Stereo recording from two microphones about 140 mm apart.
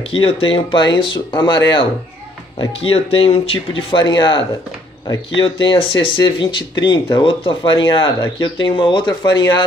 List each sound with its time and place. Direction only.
0.1 s speech: 40° left (ahead or behind)